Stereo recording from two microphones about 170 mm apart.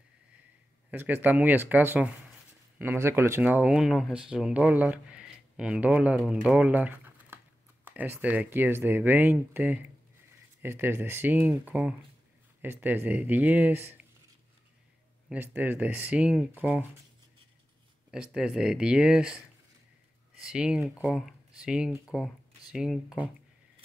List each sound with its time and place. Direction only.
0.9 s speech: 10° right (ahead or behind)
15.2 s speech: 10° right (ahead or behind)
18.1 s speech: 5° right (ahead or behind)
20.4 s speech: 5° right (ahead or behind)